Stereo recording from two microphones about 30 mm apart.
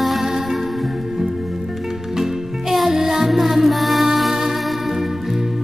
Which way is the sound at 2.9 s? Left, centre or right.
Centre.